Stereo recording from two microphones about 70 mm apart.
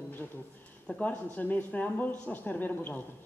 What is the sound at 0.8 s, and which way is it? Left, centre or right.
Speech, centre.